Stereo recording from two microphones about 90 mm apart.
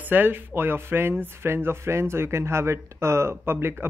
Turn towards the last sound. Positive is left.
turn(degrees=-25)  # may be behind; listen again after turning